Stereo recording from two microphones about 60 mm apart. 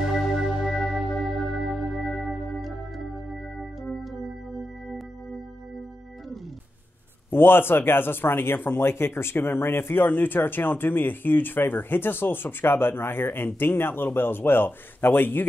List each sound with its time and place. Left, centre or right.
0.0 s music: centre
3.5 s organ: centre
7.2 s speech: left